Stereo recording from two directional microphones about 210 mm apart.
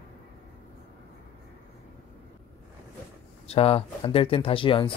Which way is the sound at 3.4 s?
25° left (ahead or behind).